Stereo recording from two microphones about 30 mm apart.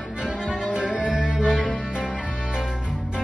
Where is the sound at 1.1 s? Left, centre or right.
Right.